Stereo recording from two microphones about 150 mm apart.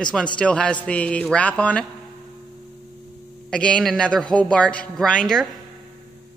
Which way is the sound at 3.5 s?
5° left (ahead or behind).